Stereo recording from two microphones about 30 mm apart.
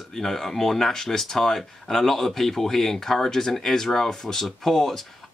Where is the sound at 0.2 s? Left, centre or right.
Centre.